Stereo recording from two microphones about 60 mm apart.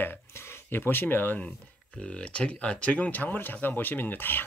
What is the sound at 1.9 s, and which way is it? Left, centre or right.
Speech, left.